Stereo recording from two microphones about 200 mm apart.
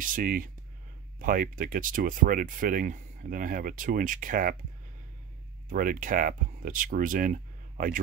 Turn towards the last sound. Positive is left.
turn(degrees=-45)  # may be behind; listen again after turning